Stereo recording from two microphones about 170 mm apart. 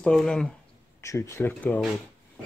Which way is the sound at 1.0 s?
15° left (ahead or behind).